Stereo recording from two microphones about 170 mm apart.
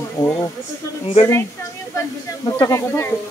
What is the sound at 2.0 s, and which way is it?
Speech, 20° left (ahead or behind).